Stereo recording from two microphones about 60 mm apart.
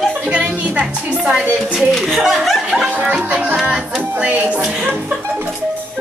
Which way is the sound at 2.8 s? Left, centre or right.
Centre.